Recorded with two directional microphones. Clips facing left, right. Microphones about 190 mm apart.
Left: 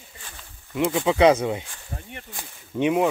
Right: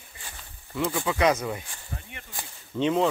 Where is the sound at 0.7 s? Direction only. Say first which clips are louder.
Left 6 dB; 20° left (ahead or behind).